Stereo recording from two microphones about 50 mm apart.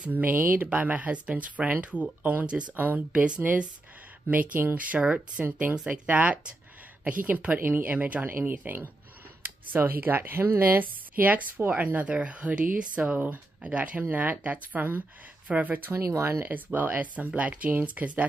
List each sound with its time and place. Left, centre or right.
0.1 s speech: right
4.3 s speech: right
4.9 s speech: right
15.9 s speech: right
16.4 s speech: right